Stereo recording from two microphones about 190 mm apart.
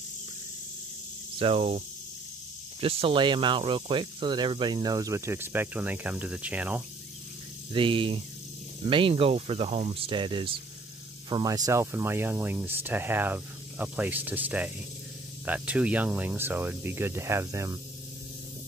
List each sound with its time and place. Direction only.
1.4 s hum: 35° right (ahead or behind)
2.8 s speech: 30° right (ahead or behind); by 6.8 s 5° right (ahead or behind)
7.7 s speech: 25° right (ahead or behind)